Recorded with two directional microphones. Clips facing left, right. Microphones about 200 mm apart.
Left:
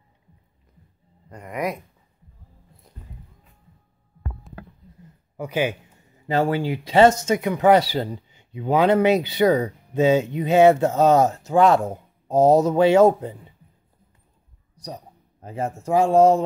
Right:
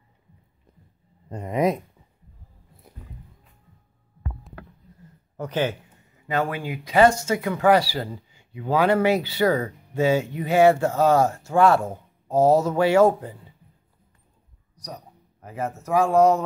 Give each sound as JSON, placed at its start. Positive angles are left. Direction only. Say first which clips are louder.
{"t": 1.3, "sound": "speech", "louder": "right 5 dB", "side_deg": -25}
{"t": 4.5, "sound": "a sound", "louder": "left 2 dB", "side_deg": 0}
{"t": 5.4, "sound": "speech", "louder": "left 1 dB", "side_deg": 10}
{"t": 6.2, "sound": "speech", "louder": "left 5 dB", "side_deg": 30}
{"t": 14.8, "sound": "a sound", "louder": "left 3 dB", "side_deg": 30}
{"t": 15.4, "sound": "speech", "louder": "left 3 dB", "side_deg": 30}